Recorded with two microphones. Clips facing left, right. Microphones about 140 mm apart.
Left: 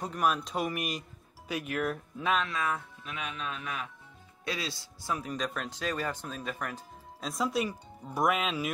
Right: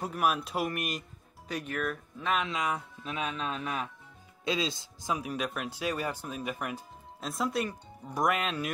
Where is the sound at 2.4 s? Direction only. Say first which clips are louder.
Right 1 dB; 15° right (ahead or behind).